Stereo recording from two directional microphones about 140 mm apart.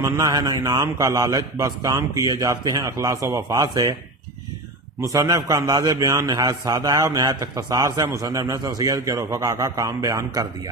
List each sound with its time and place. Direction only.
0.0 s a man's voice: 25° right (ahead or behind)
5.0 s a man's voice: 25° right (ahead or behind)